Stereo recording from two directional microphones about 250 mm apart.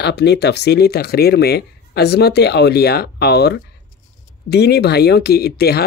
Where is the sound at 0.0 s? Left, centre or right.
Left.